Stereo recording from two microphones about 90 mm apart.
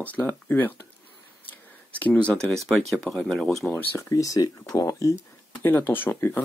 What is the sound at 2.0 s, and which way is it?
Speech, 15° left (ahead or behind).